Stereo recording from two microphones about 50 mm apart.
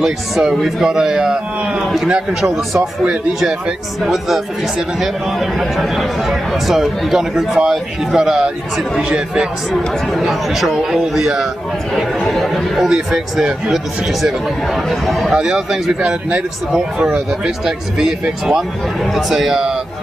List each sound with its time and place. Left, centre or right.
0.0 s speech: centre
4.0 s speech: centre
9.7 s speech: centre
12.7 s speech: centre
15.3 s speech: centre
19.0 s speech: centre